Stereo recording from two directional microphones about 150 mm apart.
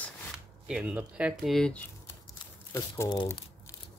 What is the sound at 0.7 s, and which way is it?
Speech, 10° right (ahead or behind).